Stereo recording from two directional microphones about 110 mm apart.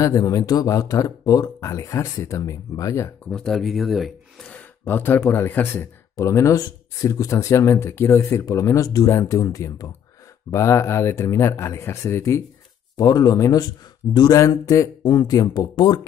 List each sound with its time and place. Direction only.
0.0 s speech: 35° left (ahead or behind)
3.3 s speech: 5° left (ahead or behind)
4.5 s a man's voice: 15° left (ahead or behind)
6.1 s speech: 30° left (ahead or behind)
14.4 s speech: 30° left (ahead or behind)